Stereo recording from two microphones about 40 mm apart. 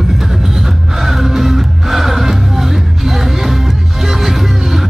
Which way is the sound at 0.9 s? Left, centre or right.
Centre.